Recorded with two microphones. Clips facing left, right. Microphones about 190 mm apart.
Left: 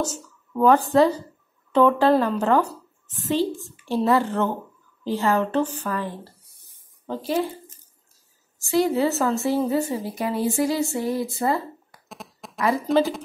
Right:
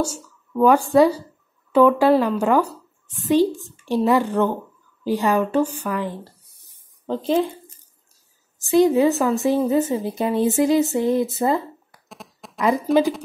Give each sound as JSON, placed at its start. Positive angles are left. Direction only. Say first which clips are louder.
{"t": 0.0, "sound": "a woman's voice", "louder": "right 3 dB", "side_deg": -10}
{"t": 7.1, "sound": "speech", "louder": "right 4 dB", "side_deg": 10}
{"t": 8.5, "sound": "a woman's voice", "louder": "right 5 dB", "side_deg": -20}